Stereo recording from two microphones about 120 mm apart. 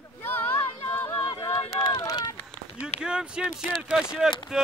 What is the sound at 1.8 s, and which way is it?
Run, 35° left (ahead or behind).